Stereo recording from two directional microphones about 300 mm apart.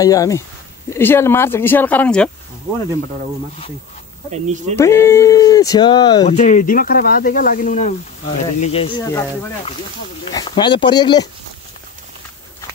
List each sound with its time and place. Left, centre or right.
0.0 s speech: centre
4.3 s speech: right
4.7 s speech: centre
10.3 s speech: centre